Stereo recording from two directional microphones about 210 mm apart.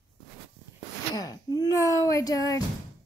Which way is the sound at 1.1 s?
20° left (ahead or behind).